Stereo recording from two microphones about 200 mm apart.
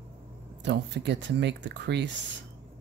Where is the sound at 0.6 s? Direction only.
60° right (ahead or behind).